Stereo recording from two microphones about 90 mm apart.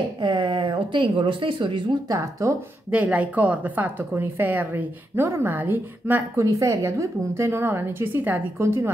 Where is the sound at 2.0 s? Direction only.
35° right (ahead or behind).